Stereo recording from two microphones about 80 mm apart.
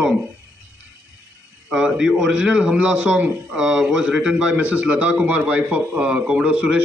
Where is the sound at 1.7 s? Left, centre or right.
Centre.